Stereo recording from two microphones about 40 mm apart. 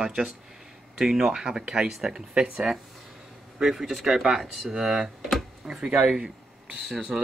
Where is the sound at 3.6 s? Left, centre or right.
Centre.